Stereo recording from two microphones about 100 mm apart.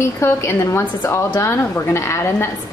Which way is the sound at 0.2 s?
25° left (ahead or behind).